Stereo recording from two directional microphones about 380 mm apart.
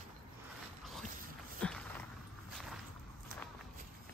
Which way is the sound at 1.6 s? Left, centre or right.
Centre.